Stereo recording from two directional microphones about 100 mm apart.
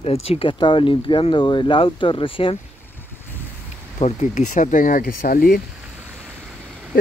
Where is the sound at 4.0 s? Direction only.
85° left.